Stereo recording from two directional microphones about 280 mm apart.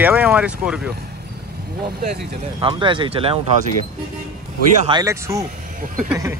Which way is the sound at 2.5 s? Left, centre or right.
Centre.